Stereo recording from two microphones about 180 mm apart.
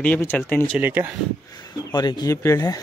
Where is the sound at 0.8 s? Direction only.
10° right (ahead or behind).